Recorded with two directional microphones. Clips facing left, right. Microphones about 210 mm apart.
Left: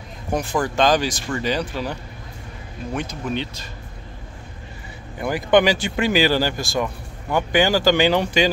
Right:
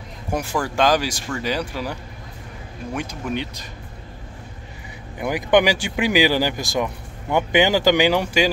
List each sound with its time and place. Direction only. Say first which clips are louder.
0.3 s speech: left 2 dB; 10° right (ahead or behind)
5.2 s speech: left 1 dB; 15° right (ahead or behind)